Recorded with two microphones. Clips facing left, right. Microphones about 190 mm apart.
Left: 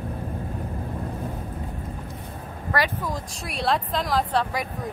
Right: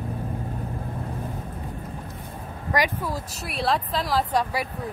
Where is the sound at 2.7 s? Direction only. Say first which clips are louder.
Right 1 dB; 10° right (ahead or behind).